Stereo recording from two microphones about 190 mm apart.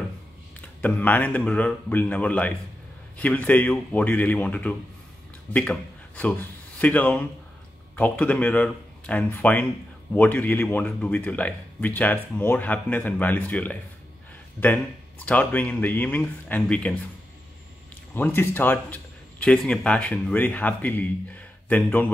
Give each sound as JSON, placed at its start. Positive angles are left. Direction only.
{"t": 0.6, "sound": "a man's voice", "side_deg": 10}
{"t": 18.1, "sound": "speech", "side_deg": 10}